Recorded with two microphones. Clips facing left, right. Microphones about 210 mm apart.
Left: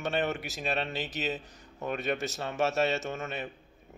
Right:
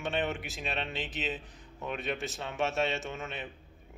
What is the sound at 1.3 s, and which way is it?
Speech, 40° left (ahead or behind).